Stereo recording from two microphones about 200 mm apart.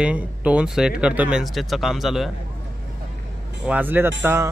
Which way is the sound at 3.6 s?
10° right (ahead or behind).